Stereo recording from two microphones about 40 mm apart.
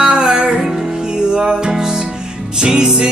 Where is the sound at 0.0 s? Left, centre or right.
Centre.